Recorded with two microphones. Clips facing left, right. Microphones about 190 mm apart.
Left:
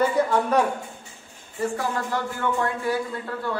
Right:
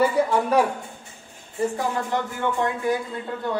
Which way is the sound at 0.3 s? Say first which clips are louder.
Right 1 dB; 10° right (ahead or behind).